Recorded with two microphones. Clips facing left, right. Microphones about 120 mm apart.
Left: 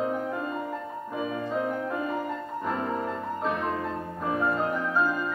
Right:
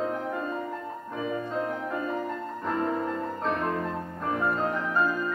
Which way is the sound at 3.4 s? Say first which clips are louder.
Even; 5° left (ahead or behind).